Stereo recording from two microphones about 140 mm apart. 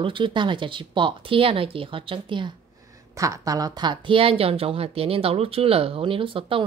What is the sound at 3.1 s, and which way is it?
Speech, 20° right (ahead or behind).